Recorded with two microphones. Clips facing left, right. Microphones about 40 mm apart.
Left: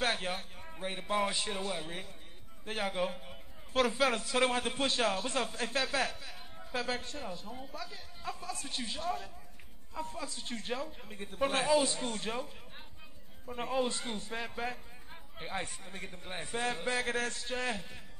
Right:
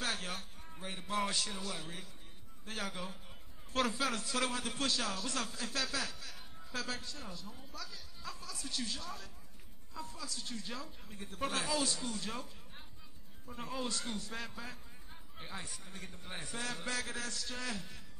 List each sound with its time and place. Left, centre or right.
0.0 s a man's voice: left
4.4 s speech: left
12.0 s speech: left
12.4 s a sound: left
13.5 s a man's voice: left
17.1 s speech: left